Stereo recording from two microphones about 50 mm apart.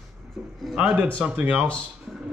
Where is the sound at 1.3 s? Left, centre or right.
Right.